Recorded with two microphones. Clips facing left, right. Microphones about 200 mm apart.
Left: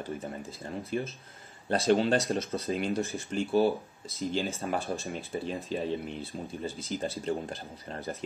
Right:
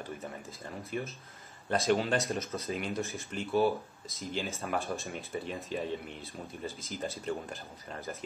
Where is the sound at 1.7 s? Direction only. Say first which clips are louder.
Left 4 dB; 30° left (ahead or behind).